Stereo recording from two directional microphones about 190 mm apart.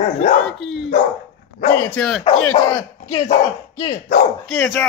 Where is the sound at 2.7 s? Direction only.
15° left (ahead or behind).